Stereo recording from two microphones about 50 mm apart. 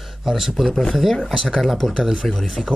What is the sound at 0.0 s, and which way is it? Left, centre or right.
Speech, centre.